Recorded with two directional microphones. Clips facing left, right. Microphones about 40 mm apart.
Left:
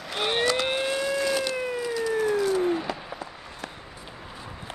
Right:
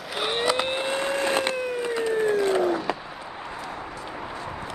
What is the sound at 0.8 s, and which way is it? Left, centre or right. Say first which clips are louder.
Vehicle: right 1 dB; right.